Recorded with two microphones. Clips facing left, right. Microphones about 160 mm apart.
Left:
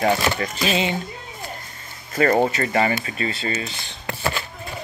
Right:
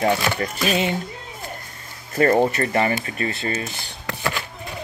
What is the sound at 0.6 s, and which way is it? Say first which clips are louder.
Mechanisms: right 1 dB; 20° left (ahead or behind).